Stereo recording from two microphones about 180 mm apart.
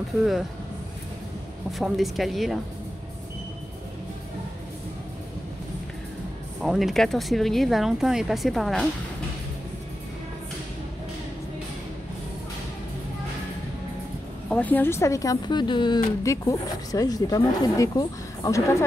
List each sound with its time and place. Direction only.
0.2 s speech: centre (ahead or behind)
1.7 s speech: centre (ahead or behind)
6.6 s speech: centre (ahead or behind)
14.5 s speech: 10° left (ahead or behind)